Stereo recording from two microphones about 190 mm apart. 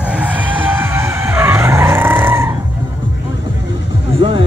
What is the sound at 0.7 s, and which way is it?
Skidding, 10° right (ahead or behind).